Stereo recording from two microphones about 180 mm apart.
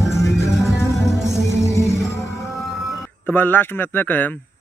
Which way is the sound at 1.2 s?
Centre (ahead or behind).